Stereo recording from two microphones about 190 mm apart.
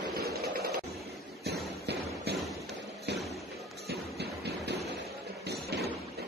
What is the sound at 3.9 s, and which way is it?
Music, 60° right (ahead or behind).